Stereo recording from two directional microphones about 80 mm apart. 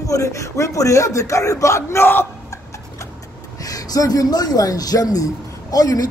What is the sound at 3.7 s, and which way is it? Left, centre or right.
Speech, left.